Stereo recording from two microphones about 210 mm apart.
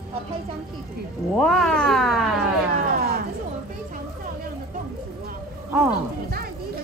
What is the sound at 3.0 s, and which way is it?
Music, 45° right (ahead or behind).